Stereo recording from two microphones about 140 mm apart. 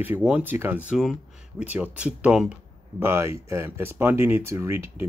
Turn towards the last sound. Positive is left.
turn(degrees=-20)  # may be behind; listen again after turning